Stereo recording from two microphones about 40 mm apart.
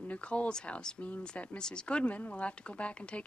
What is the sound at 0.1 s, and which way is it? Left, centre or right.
Speech, left.